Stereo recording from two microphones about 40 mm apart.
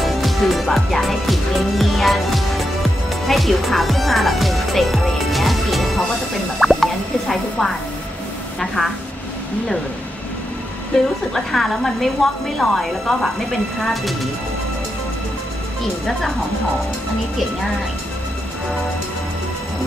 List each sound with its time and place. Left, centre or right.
0.0 s music: centre
0.9 s speech: centre
6.6 s drip: centre
7.2 s a woman's voice: centre
8.5 s speech: centre
10.9 s a woman's voice: centre
11.3 s a woman's voice: centre
16.1 s a woman's voice: centre